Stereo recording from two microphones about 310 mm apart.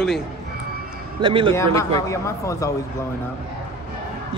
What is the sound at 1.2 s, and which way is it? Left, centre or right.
Speech, centre.